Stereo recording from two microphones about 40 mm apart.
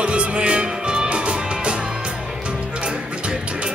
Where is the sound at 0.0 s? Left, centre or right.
Right.